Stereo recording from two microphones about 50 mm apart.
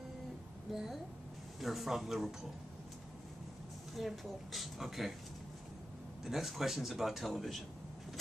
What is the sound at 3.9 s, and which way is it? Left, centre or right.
Speech, centre.